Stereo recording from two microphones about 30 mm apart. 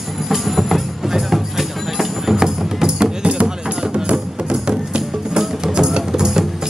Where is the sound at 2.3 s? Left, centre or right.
Right.